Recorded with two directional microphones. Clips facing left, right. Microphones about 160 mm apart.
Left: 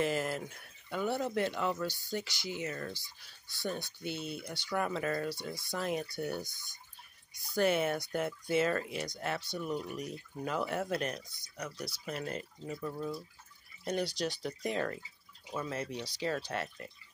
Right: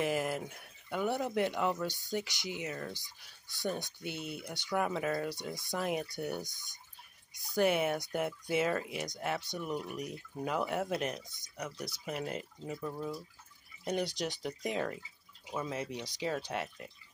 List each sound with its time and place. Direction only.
0.0 s speech: 15° right (ahead or behind)